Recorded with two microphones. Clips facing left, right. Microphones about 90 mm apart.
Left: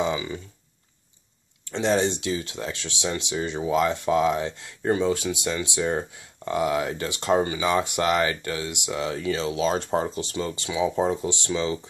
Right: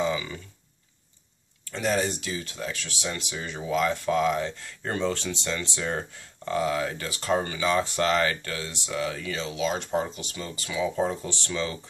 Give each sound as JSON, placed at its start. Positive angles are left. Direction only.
{"t": 0.0, "sound": "speech", "side_deg": 20}
{"t": 1.6, "sound": "speech", "side_deg": 25}
{"t": 8.9, "sound": "speech", "side_deg": 25}